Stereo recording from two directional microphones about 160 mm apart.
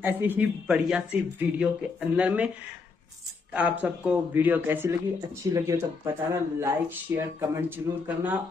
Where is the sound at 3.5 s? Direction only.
10° right (ahead or behind).